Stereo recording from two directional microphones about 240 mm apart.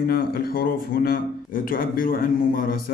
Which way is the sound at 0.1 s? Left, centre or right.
Left.